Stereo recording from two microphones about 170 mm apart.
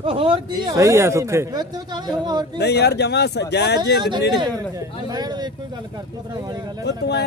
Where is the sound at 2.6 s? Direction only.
75° left (ahead or behind).